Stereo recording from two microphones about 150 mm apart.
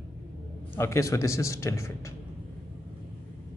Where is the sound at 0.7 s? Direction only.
15° left (ahead or behind).